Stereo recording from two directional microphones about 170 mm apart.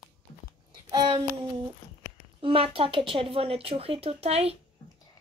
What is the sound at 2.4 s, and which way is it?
Speech, 30° right (ahead or behind).